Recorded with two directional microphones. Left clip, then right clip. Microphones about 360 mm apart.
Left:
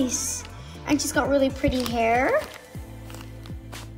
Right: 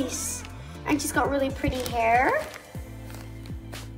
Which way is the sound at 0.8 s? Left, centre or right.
Left.